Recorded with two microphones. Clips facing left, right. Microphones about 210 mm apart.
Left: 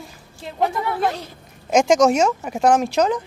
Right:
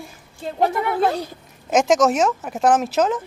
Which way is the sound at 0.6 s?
30° right (ahead or behind).